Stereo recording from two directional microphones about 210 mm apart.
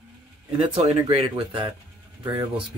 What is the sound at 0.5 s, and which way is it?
Speech, 25° right (ahead or behind).